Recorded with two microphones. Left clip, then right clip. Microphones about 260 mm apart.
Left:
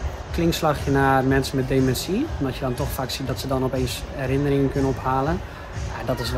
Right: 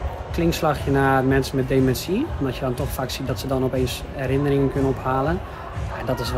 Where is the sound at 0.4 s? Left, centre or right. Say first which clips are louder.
Even; centre.